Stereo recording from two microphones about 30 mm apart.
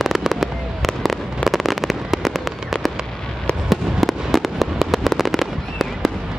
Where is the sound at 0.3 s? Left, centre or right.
Centre.